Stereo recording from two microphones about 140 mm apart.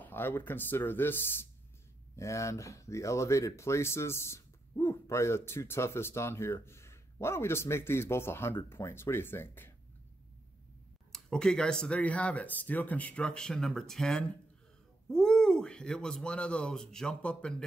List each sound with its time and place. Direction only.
0.0 s speech: 15° left (ahead or behind)
11.1 s speech: 5° left (ahead or behind)